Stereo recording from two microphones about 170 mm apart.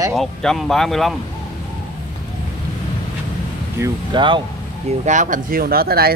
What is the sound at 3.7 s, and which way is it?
Speech, 20° right (ahead or behind).